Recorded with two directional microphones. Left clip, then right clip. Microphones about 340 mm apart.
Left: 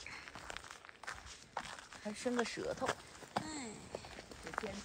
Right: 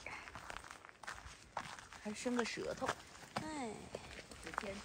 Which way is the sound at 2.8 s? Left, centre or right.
Left.